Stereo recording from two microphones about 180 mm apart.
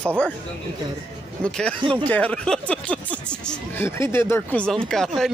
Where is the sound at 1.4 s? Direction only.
5° left (ahead or behind).